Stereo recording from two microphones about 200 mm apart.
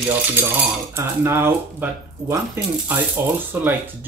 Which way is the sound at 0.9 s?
10° right (ahead or behind).